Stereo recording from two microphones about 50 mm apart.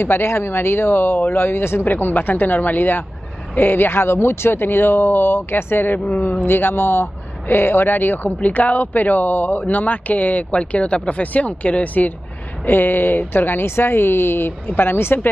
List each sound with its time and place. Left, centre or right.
0.0 s speech: left
1.9 s speech: left
6.4 s speech: left